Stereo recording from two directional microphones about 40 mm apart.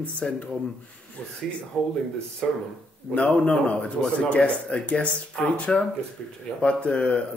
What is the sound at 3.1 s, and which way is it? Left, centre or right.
Speech, left.